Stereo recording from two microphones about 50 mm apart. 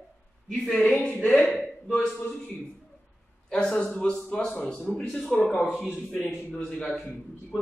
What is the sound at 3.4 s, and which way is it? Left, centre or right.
A man's voice, centre.